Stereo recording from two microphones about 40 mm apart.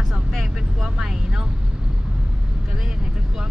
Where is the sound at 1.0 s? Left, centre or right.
Centre.